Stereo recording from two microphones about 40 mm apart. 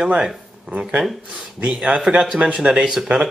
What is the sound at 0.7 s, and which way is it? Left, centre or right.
Speech, right.